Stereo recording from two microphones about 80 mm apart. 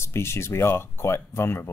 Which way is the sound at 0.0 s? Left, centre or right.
Left.